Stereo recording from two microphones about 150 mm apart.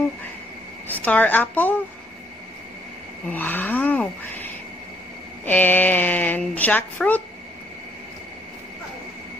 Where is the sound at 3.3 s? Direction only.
10° left (ahead or behind).